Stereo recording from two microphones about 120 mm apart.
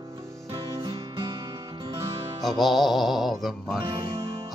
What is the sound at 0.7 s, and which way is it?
Music, 30° right (ahead or behind).